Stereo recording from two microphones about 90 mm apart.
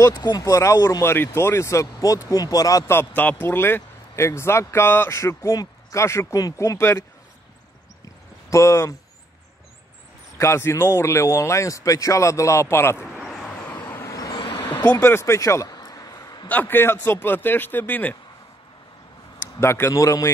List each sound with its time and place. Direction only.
0.1 s speech: 50° left (ahead or behind)
0.5 s speech: 35° left (ahead or behind)
3.2 s speech: 20° left (ahead or behind)
8.5 s speech: 35° left (ahead or behind)
10.3 s speech: 30° left (ahead or behind)
13.0 s a sound: 5° right (ahead or behind)
13.6 s vehicle: 20° left (ahead or behind)
14.1 s vehicle: 40° left (ahead or behind)
14.4 s a sound: 60° left (ahead or behind)
14.8 s speech: 20° left (ahead or behind)
15.7 s a sound: 45° left (ahead or behind)
16.4 s speech: 20° left (ahead or behind)
19.4 s speech: 30° left (ahead or behind)